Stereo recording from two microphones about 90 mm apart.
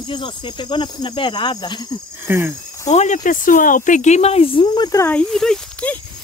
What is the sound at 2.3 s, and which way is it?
Speech, 25° right (ahead or behind).